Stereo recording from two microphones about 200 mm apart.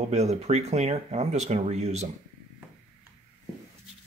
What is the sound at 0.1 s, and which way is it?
Speech, 35° right (ahead or behind).